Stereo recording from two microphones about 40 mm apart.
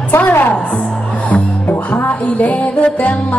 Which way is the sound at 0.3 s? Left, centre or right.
Left.